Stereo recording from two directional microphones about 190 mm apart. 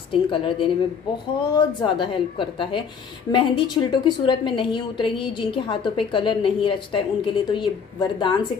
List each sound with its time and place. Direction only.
0.1 s a woman's voice: 25° left (ahead or behind)